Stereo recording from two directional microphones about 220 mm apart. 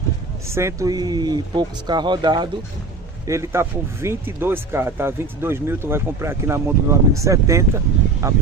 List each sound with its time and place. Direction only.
0.6 s speech: 15° right (ahead or behind)